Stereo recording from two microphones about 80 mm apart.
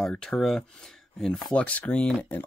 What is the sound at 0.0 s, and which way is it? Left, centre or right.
Speech, centre.